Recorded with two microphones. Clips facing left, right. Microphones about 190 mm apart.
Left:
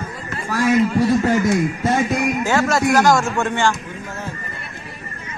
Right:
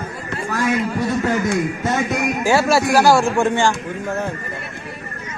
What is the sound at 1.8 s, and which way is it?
Speech, 30° left (ahead or behind).